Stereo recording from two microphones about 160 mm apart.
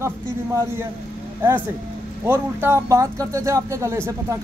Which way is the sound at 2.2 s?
15° right (ahead or behind).